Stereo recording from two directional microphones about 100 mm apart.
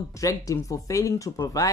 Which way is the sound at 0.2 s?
35° left (ahead or behind).